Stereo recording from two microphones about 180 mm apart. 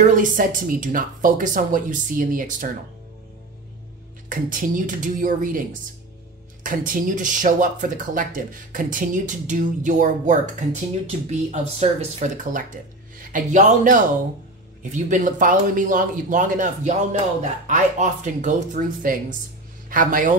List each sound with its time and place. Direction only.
0.0 s speech: 45° right (ahead or behind)
4.3 s speech: 50° right (ahead or behind)